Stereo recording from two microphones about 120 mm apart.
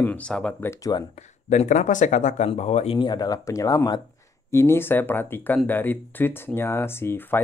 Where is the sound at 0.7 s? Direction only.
30° left (ahead or behind).